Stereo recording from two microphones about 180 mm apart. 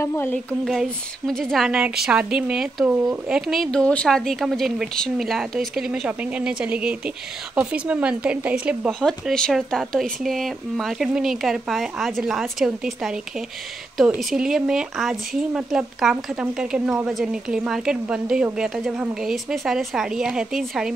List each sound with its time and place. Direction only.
0.0 s speech: 10° left (ahead or behind)